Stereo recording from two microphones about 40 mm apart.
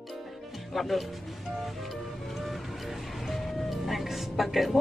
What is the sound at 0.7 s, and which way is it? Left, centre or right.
Speech, centre.